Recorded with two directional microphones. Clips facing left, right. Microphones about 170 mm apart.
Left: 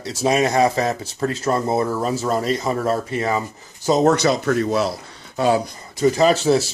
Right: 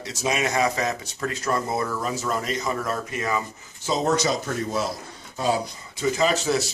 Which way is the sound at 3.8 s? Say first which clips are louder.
Left 7 dB; 50° left (ahead or behind).